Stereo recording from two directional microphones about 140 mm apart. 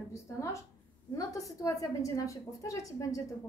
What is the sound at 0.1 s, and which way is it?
A woman's voice, 20° left (ahead or behind).